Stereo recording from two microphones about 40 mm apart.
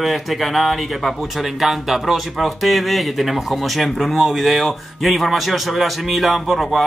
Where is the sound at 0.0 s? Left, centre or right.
Centre.